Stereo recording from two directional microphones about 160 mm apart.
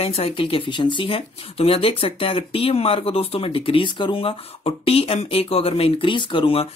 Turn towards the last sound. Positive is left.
turn(degrees=35)  # may be behind; listen again after turning